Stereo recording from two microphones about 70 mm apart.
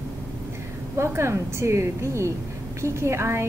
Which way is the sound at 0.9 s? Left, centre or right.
Right.